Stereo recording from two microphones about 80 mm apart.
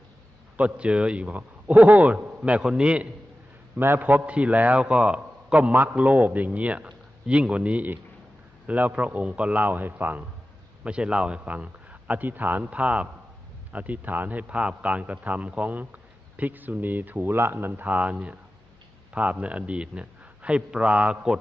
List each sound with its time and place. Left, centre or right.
0.6 s a man's voice: centre
3.7 s a man's voice: right
10.8 s a man's voice: centre